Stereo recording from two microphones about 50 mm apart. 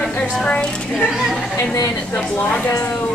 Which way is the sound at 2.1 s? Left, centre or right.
Left.